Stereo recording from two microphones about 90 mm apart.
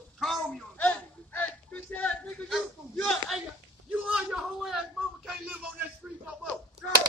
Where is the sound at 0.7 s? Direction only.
15° left (ahead or behind).